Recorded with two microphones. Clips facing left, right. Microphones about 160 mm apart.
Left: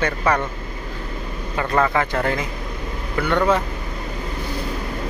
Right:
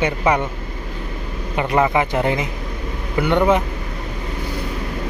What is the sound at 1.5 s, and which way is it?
Speech, 15° right (ahead or behind).